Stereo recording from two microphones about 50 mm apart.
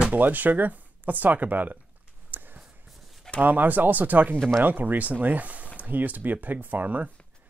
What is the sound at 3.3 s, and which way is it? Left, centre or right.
Speech, right.